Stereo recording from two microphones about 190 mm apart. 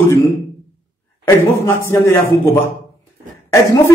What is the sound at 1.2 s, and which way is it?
A man's voice, 15° left (ahead or behind).